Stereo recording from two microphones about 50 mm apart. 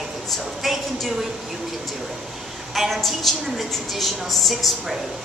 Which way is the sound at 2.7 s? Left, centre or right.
Centre.